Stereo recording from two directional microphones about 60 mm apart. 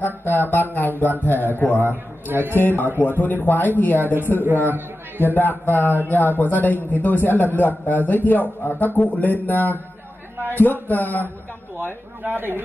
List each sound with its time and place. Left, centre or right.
0.0 s speech: left
1.7 s a man's voice: right
2.5 s speech: left
4.0 s a man's voice: right
5.2 s speech: left
12.2 s a man's voice: right